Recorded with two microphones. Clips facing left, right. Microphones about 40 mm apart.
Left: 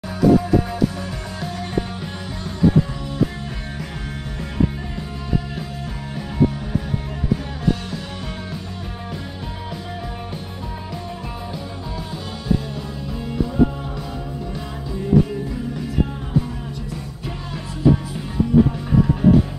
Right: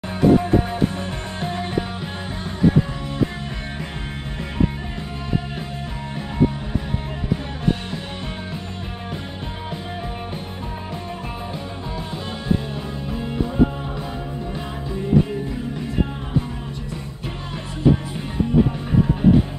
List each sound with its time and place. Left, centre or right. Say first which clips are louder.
0.2 s music: even; right
13.1 s music: left 1 dB; right
18.9 s music: left 1 dB; centre